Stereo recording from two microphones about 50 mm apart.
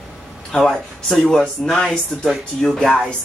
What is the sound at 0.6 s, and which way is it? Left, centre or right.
Speech, centre.